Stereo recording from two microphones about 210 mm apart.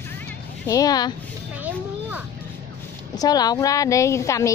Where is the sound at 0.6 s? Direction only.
15° left (ahead or behind).